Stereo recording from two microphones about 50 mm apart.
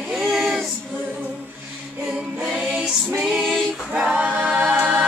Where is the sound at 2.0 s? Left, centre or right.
Centre.